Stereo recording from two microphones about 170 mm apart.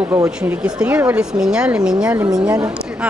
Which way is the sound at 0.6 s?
5° right (ahead or behind).